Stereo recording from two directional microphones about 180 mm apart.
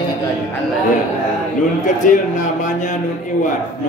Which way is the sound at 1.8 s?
45° left (ahead or behind).